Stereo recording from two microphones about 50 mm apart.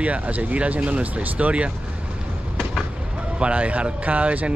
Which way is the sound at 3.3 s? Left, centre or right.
Right.